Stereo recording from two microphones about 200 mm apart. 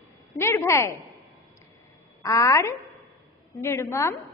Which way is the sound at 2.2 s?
15° left (ahead or behind).